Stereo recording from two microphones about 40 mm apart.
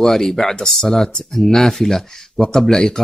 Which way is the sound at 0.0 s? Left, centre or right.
Centre.